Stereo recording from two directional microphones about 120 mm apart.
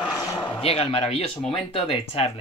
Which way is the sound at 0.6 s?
55° left (ahead or behind).